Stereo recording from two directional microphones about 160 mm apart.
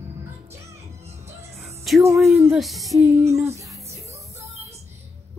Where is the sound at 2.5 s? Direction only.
Centre (ahead or behind).